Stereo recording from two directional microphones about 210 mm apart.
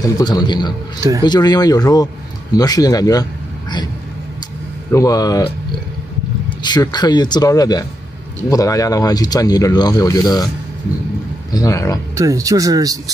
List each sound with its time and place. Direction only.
0.0 s speech: 20° left (ahead or behind)
4.9 s speech: 15° left (ahead or behind)
6.6 s speech: 20° left (ahead or behind)
11.5 s speech: 15° left (ahead or behind)
12.2 s speech: 15° right (ahead or behind)